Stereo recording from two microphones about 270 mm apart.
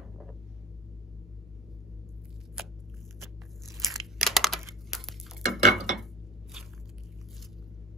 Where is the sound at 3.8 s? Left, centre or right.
Centre.